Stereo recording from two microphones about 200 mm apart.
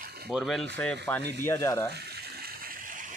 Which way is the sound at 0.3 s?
Centre (ahead or behind).